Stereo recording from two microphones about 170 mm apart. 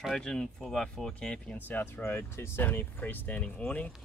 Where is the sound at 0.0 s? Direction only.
5° left (ahead or behind).